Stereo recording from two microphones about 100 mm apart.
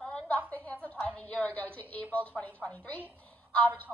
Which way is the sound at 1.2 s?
15° left (ahead or behind).